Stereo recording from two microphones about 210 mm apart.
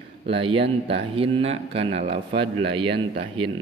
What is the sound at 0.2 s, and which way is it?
Speech, 25° right (ahead or behind).